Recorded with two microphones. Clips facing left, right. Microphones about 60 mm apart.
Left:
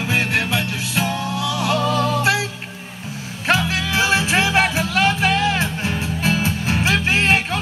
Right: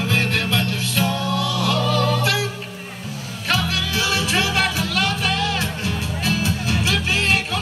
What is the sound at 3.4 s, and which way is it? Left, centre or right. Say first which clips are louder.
Music: left 3 dB; left.